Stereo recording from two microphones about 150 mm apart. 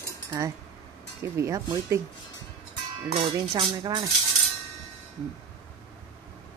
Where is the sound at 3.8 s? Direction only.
25° right (ahead or behind).